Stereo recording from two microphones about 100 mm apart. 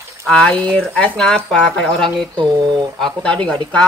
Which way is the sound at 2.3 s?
50° right (ahead or behind).